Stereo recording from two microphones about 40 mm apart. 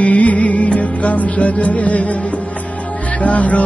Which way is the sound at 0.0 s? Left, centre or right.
Left.